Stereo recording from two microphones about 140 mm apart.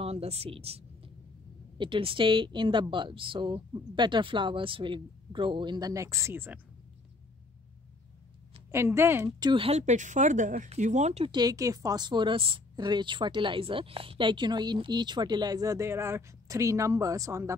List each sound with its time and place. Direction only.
0.0 s a sound: 45° right (ahead or behind)
1.8 s a woman's voice: 40° right (ahead or behind); by 6.6 s 15° right (ahead or behind)
8.7 s a woman's voice: 15° right (ahead or behind)
9.4 s a woman's voice: 35° right (ahead or behind)
9.7 s speech: 55° right (ahead or behind)
11.2 s a woman's voice: 30° right (ahead or behind)